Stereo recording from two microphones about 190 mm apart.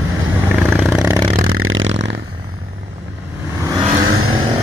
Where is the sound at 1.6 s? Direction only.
90° right.